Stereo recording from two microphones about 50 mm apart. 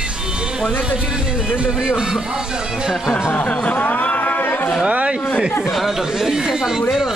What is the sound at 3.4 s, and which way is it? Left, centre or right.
Speech, centre.